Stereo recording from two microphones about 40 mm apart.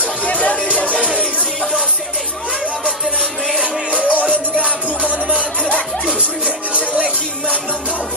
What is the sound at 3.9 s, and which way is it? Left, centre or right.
Music, right.